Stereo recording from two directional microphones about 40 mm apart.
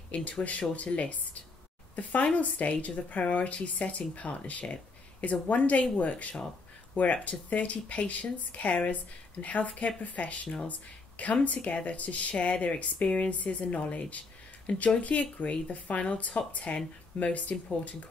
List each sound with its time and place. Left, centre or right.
0.1 s speech: left